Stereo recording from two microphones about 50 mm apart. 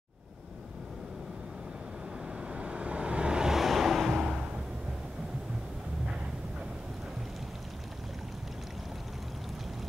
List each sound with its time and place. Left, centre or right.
2.4 s vehicle: right
3.5 s waves: centre